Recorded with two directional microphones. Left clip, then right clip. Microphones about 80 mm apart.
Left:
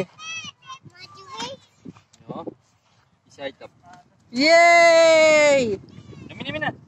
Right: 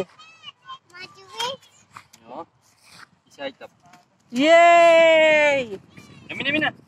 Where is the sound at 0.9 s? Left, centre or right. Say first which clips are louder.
Right 4 dB; left.